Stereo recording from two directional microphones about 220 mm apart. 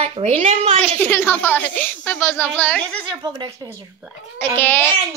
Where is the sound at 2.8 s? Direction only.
20° right (ahead or behind).